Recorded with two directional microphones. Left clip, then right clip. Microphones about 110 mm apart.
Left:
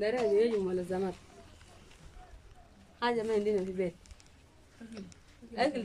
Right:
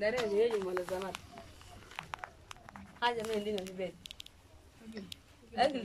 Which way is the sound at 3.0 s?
45° left (ahead or behind).